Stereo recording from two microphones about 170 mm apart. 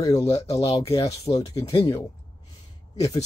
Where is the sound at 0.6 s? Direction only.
35° left (ahead or behind).